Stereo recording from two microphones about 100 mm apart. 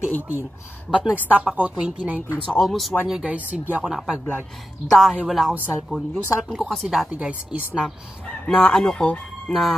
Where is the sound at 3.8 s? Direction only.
5° right (ahead or behind).